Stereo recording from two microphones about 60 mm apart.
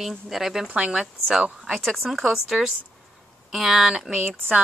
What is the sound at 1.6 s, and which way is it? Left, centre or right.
Speech, centre.